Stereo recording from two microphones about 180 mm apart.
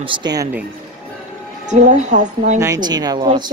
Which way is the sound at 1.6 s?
40° right (ahead or behind).